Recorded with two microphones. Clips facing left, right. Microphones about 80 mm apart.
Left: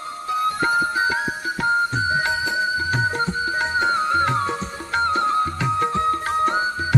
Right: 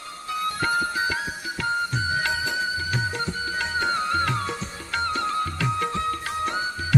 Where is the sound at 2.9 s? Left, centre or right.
Left.